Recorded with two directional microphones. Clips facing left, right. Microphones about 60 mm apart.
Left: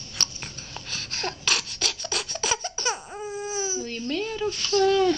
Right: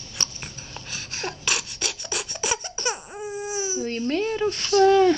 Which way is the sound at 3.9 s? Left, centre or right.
Right.